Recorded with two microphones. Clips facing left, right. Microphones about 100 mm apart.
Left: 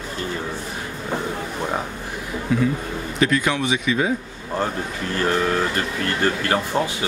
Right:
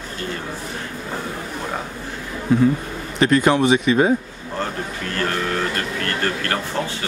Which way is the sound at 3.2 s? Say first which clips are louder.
Right 5 dB; 40° right (ahead or behind).